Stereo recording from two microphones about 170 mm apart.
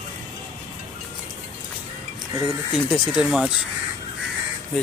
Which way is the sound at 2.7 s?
5° right (ahead or behind).